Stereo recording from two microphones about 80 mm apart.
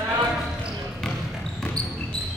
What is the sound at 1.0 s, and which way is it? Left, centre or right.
Basketball bounce, centre.